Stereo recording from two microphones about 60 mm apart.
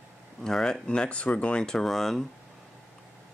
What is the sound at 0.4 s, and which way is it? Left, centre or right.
Speech, centre.